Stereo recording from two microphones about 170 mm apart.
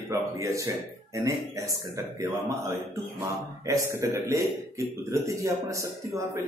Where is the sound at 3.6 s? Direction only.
20° right (ahead or behind).